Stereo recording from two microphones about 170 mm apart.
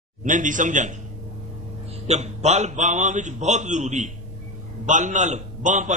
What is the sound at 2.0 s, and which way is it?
A man's voice, 40° right (ahead or behind).